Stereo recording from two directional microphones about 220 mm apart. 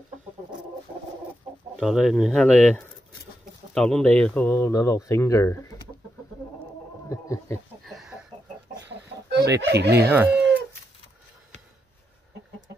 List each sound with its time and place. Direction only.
1.8 s speech: centre (ahead or behind)
7.1 s speech: 15° left (ahead or behind)
7.8 s chicken: centre (ahead or behind)
8.8 s chicken: 45° right (ahead or behind)
9.7 s speech: 50° right (ahead or behind)
10.1 s speech: 10° right (ahead or behind)